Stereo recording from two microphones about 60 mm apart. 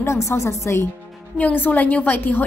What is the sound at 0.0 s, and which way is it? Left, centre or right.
Speech, left.